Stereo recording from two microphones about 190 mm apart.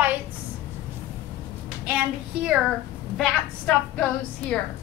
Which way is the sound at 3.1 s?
5° left (ahead or behind).